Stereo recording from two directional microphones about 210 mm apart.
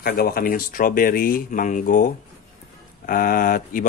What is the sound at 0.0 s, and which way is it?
Speech, 45° left (ahead or behind).